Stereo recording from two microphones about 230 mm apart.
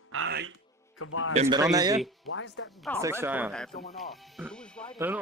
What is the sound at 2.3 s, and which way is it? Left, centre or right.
Speech, left.